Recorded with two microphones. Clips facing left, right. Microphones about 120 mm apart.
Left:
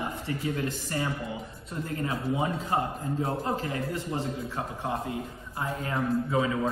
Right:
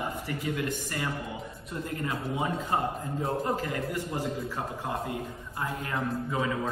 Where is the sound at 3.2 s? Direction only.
25° left (ahead or behind).